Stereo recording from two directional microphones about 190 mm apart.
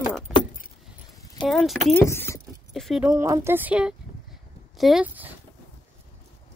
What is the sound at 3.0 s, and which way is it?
Speech, 15° right (ahead or behind).